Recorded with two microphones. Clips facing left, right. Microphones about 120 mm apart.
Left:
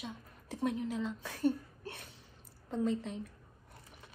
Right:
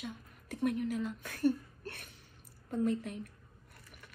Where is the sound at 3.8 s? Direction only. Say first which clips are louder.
Left 1 dB; 25° left (ahead or behind).